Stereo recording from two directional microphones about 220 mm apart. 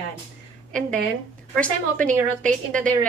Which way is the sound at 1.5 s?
5° left (ahead or behind).